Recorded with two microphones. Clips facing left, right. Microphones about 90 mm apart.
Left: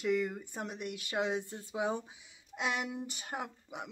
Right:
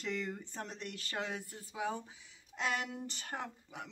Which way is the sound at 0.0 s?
10° left (ahead or behind).